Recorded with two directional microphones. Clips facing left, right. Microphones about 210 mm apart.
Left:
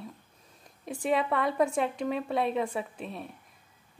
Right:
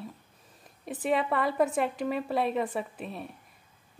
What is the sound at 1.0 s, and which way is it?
A woman's voice, centre (ahead or behind).